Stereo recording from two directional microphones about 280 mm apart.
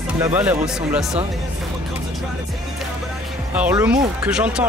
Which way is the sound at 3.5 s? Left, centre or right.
Centre.